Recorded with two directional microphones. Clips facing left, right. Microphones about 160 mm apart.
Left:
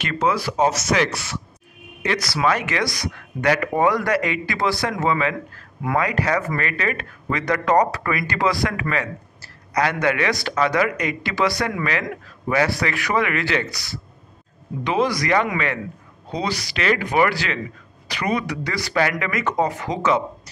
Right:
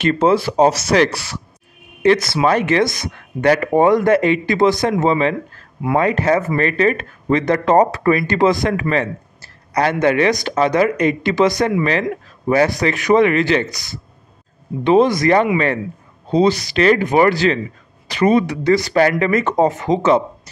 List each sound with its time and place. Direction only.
0.0 s speech: 30° right (ahead or behind)
2.0 s speech: 25° right (ahead or behind)
12.6 s speech: 20° right (ahead or behind)